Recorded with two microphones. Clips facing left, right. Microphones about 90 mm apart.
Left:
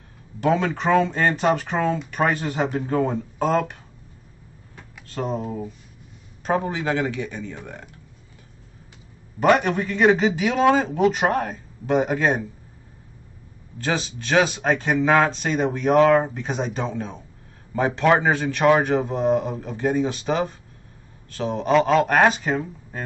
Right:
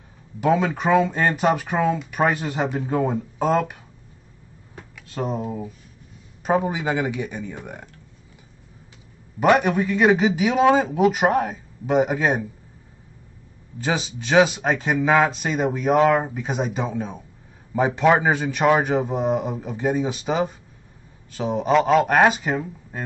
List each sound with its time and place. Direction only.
0.4 s speech: 5° right (ahead or behind)
5.0 s speech: 5° right (ahead or behind)
9.4 s speech: 5° right (ahead or behind)
13.7 s speech: 10° right (ahead or behind)